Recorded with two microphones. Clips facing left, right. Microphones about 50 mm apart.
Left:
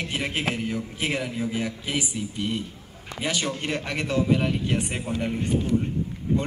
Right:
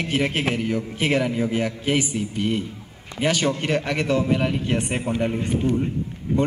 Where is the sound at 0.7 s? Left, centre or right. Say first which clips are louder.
Right 5 dB; right.